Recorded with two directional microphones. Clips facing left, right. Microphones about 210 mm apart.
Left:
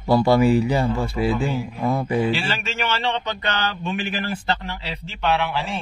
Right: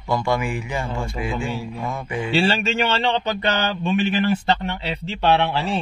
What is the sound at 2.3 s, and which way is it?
Speech, 30° right (ahead or behind).